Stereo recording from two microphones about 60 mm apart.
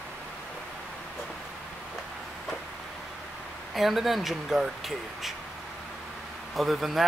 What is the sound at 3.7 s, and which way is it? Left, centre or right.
Speech, centre.